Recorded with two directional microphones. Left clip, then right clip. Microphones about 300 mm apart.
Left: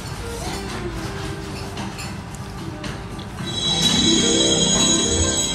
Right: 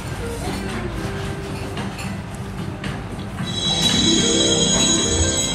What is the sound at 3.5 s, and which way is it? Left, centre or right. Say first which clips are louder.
Music: even; centre.